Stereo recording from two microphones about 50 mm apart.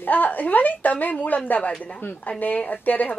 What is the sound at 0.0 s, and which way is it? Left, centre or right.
A woman's voice, left.